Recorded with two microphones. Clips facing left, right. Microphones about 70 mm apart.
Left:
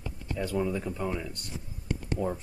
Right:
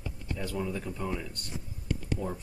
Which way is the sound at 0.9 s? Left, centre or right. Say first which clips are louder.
Left 2 dB; centre.